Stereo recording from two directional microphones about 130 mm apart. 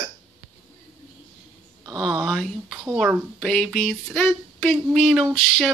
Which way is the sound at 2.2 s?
Centre (ahead or behind).